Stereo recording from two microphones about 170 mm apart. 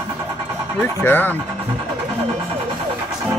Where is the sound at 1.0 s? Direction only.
10° left (ahead or behind).